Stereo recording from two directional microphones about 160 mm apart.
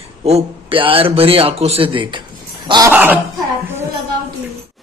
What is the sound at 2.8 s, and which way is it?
Speech, 10° right (ahead or behind).